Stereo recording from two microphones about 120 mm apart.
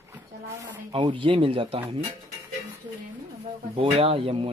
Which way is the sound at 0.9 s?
45° right (ahead or behind).